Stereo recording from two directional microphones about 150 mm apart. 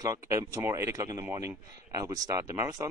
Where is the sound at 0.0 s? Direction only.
20° right (ahead or behind).